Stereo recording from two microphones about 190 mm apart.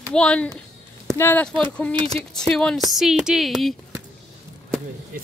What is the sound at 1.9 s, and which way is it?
Speech, 30° right (ahead or behind).